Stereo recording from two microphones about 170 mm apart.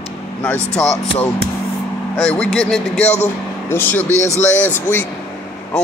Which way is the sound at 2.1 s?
5° left (ahead or behind).